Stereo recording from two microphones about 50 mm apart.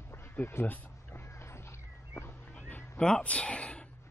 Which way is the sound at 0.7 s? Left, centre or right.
Left.